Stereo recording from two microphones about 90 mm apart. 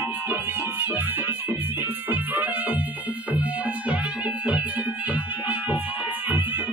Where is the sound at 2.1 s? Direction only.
20° right (ahead or behind).